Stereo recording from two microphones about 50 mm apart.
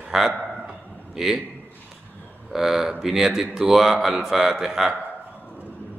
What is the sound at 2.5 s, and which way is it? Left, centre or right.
Speech, centre.